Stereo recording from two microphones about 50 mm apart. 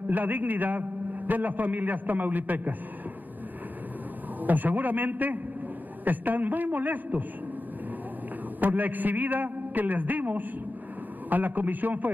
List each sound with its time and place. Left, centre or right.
0.1 s a man's voice: right
4.4 s a man's voice: right
8.5 s a man's voice: right